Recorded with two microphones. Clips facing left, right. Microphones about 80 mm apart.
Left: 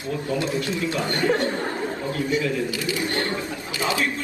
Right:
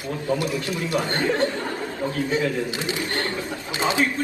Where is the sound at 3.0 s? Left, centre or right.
Left.